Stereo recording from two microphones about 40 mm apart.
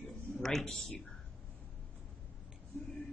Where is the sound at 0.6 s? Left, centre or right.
Left.